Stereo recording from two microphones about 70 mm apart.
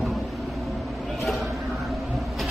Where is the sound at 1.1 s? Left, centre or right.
Centre.